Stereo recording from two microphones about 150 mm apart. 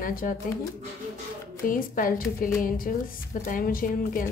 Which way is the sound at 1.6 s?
65° left (ahead or behind).